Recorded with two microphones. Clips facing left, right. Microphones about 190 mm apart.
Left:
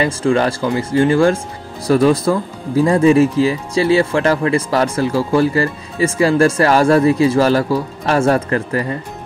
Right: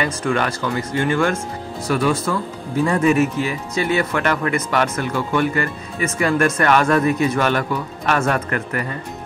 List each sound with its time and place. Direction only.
0.0 s speech: 30° left (ahead or behind)